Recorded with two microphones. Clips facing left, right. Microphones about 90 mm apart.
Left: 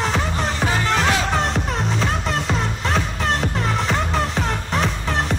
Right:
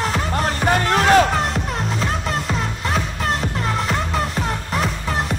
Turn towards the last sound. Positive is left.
turn(degrees=-5)  # may be behind; listen again after turning